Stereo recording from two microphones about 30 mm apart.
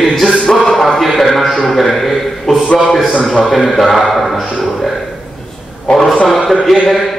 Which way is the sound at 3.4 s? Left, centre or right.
Centre.